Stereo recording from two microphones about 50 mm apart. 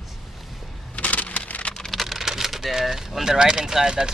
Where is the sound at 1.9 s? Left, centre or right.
Centre.